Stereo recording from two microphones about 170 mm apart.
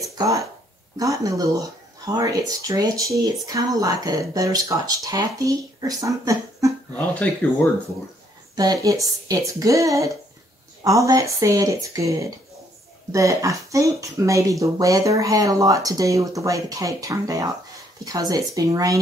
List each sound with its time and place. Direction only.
0.2 s speech: 20° right (ahead or behind)
7.2 s speech: 10° left (ahead or behind)
8.5 s speech: 20° right (ahead or behind)